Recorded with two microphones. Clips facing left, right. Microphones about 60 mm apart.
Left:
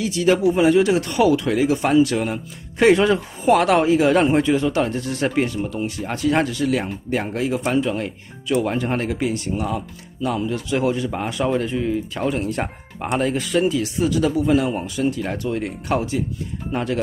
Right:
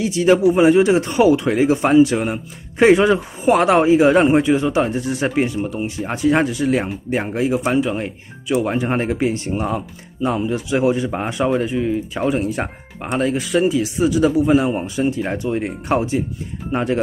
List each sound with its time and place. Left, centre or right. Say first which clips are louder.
0.0 s speech: right 3 dB; right
10.5 s speech: right 3 dB; centre